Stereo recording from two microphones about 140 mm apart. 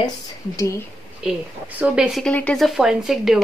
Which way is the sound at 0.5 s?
20° left (ahead or behind).